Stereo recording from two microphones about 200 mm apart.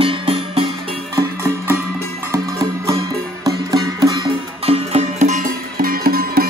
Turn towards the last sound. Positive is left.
turn(degrees=-50)  # may be behind; listen again after turning